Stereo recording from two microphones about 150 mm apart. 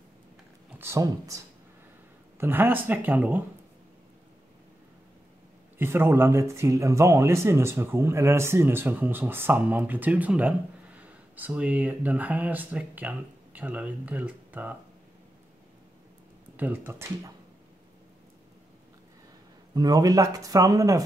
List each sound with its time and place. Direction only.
0.7 s speech: 20° right (ahead or behind)
5.8 s speech: 15° right (ahead or behind)
16.5 s speech: 10° right (ahead or behind)
19.7 s speech: 25° right (ahead or behind)